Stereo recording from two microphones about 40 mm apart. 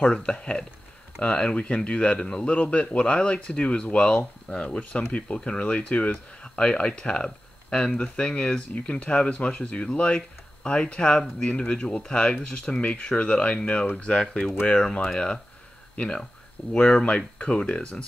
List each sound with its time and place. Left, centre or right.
0.0 s speech: left
2.4 s speech: left; by 16.3 s centre
16.7 s speech: left